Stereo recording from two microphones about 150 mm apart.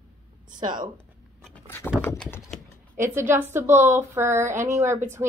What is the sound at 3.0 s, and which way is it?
A woman's voice, 15° right (ahead or behind).